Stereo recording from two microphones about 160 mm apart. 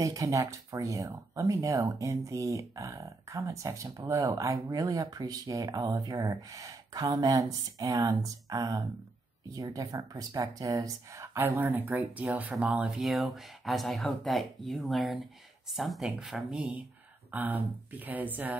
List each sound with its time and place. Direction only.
0.0 s speech: 20° right (ahead or behind)